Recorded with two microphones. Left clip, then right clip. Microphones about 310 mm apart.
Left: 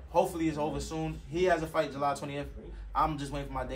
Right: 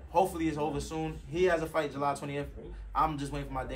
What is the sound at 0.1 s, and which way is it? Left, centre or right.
Speech, centre.